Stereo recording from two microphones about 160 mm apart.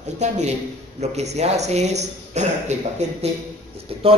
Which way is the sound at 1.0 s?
45° right (ahead or behind).